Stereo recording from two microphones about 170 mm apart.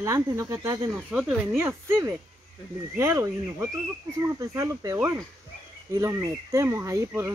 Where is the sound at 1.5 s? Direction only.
15° right (ahead or behind).